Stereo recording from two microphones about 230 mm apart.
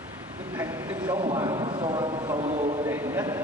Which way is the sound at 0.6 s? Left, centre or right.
Centre.